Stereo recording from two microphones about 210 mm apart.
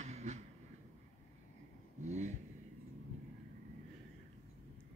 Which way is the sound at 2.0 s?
35° right (ahead or behind).